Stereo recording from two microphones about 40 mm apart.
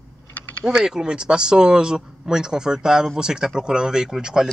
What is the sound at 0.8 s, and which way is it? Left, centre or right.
Speech, centre.